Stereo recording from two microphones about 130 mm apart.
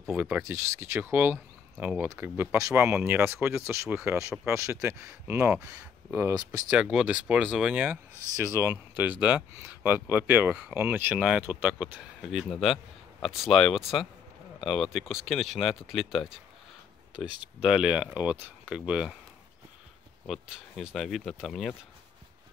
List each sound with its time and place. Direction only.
0.1 s speech: 10° right (ahead or behind)
6.7 s speech: 5° right (ahead or behind)
20.2 s speech: 5° right (ahead or behind)